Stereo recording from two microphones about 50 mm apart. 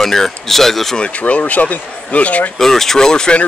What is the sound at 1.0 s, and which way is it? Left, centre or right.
Speech, left.